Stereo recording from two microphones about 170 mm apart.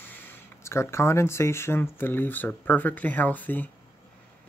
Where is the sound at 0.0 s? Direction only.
10° left (ahead or behind).